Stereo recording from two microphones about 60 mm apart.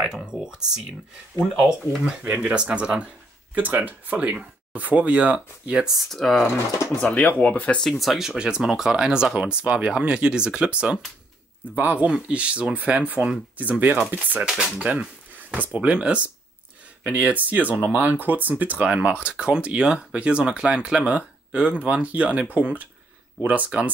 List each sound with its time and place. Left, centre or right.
0.0 s speech: centre
2.0 s speech: right
5.9 s speech: centre
7.2 s speech: left
7.9 s speech: centre
11.7 s speech: right